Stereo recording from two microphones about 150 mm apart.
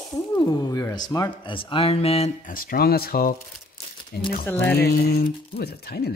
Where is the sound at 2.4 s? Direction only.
70° left (ahead or behind).